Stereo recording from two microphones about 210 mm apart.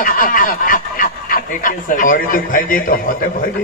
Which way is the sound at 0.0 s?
40° left (ahead or behind).